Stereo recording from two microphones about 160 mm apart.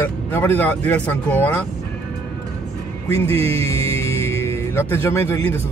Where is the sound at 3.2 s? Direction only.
40° right (ahead or behind).